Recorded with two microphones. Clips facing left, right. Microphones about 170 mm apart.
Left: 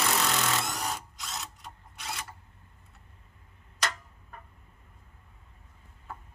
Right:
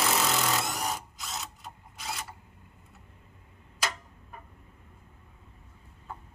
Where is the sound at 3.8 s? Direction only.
5° right (ahead or behind).